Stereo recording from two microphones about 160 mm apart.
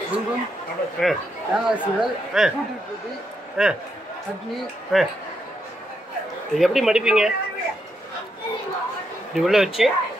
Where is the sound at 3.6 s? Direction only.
5° right (ahead or behind).